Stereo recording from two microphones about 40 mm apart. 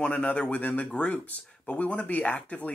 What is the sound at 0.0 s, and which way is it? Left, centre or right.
Speech, left.